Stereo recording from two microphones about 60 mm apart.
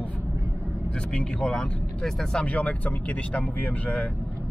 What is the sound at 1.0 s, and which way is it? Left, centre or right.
Speech, centre.